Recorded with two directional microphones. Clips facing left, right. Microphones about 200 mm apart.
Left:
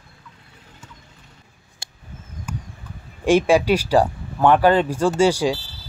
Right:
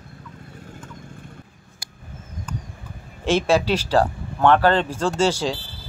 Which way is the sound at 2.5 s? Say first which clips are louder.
Left 1 dB; 10° left (ahead or behind).